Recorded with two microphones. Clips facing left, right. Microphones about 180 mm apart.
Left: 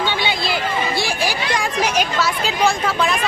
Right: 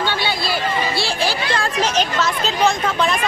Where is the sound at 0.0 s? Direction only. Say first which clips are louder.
Even; 20° left (ahead or behind).